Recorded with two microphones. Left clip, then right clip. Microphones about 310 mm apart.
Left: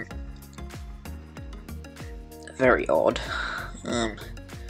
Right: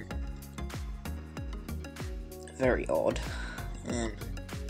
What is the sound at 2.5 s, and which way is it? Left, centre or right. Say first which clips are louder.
Speech: left 8 dB; left.